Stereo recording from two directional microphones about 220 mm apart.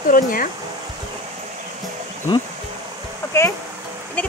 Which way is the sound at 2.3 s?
20° left (ahead or behind).